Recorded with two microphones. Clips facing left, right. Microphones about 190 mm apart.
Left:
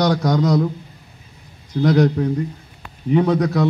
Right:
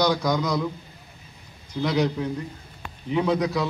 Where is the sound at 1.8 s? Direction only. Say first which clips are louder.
Left 7 dB; 45° left (ahead or behind).